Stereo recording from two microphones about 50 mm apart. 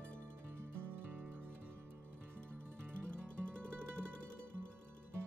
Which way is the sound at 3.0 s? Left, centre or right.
Centre.